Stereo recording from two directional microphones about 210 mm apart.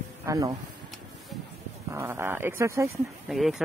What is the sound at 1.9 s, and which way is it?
Speech, 10° right (ahead or behind).